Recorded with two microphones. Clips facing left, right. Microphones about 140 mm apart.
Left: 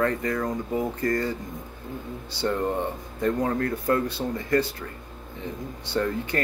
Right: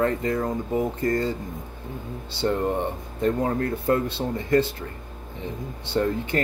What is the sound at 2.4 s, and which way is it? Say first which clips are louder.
Speech: right 2 dB; 20° right (ahead or behind).